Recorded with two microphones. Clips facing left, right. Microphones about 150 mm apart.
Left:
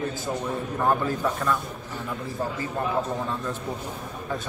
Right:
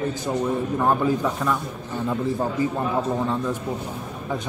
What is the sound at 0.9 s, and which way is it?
Speech, 15° right (ahead or behind).